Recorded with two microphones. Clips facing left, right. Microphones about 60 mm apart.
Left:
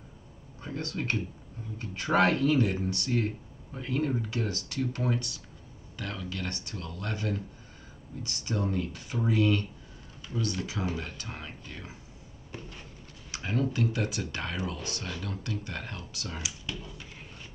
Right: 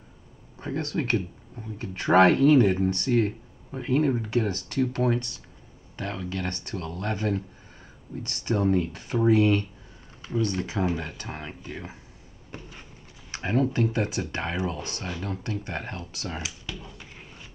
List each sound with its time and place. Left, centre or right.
0.6 s speech: right
5.9 s speech: right
9.4 s speech: right
13.3 s speech: right